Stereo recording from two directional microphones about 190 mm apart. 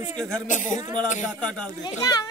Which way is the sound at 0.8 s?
20° right (ahead or behind).